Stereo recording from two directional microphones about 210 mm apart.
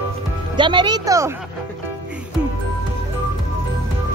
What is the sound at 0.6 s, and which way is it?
Speech, 20° right (ahead or behind).